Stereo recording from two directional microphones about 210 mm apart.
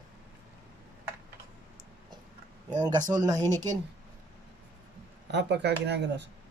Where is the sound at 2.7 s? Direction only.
20° right (ahead or behind).